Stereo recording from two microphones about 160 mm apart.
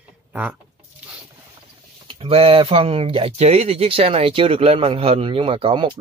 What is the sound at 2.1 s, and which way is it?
Speech, 35° right (ahead or behind).